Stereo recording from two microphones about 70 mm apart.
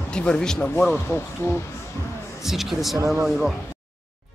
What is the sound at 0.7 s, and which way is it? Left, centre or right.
Speech, left.